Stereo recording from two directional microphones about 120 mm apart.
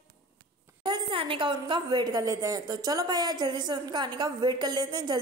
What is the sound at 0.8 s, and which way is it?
A woman's voice, 45° right (ahead or behind).